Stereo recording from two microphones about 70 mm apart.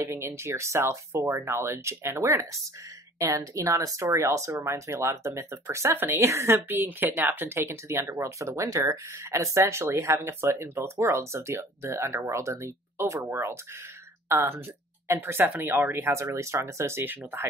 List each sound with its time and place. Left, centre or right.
0.0 s speech: right
3.2 s speech: right